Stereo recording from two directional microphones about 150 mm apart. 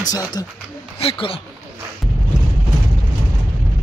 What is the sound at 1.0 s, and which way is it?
Speech, 40° left (ahead or behind).